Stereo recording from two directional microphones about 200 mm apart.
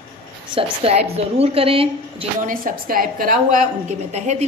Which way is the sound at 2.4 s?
45° right (ahead or behind).